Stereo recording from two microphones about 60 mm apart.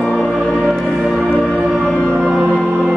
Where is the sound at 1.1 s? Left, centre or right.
Centre.